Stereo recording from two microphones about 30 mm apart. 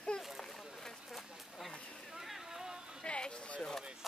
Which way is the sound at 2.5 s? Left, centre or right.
Centre.